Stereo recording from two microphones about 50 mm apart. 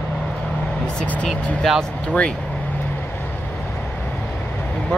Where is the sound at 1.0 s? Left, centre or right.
Left.